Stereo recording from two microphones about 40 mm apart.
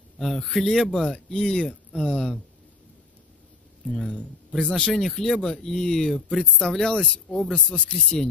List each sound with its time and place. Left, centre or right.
0.2 s speech: centre
4.6 s speech: centre
6.9 s speech: left
7.5 s speech: left